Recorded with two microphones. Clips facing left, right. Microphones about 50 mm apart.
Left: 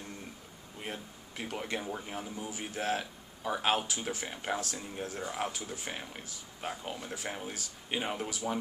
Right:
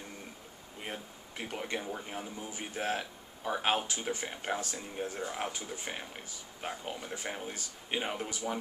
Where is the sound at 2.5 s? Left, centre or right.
Centre.